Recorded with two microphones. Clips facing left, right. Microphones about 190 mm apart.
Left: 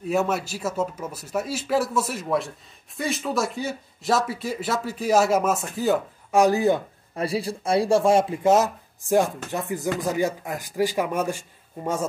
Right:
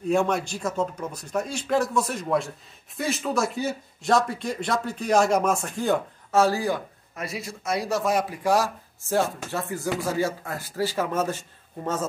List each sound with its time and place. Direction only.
0.1 s speech: 5° left (ahead or behind)
6.4 s speech: 20° left (ahead or behind)